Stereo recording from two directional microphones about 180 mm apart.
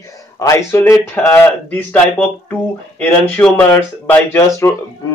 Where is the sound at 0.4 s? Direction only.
15° left (ahead or behind).